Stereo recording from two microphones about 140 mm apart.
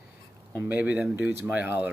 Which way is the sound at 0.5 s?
10° right (ahead or behind).